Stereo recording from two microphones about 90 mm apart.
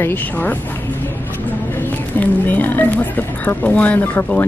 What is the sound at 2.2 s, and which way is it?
Speech, 20° left (ahead or behind).